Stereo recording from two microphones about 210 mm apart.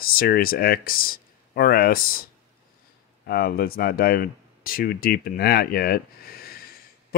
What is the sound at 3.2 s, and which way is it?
Speech, 45° left (ahead or behind).